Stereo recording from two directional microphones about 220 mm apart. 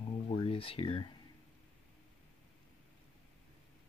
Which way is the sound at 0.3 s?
25° left (ahead or behind).